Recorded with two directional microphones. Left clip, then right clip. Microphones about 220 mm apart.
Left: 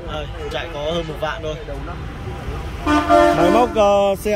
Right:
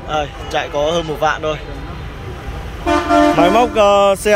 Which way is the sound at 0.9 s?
20° right (ahead or behind).